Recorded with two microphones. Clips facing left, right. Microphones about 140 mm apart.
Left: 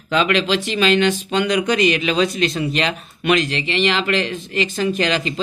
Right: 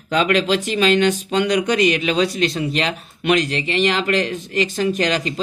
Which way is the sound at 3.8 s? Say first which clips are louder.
Right 1 dB; 90° left.